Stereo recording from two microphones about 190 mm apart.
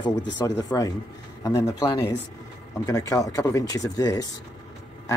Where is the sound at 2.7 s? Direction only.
15° left (ahead or behind).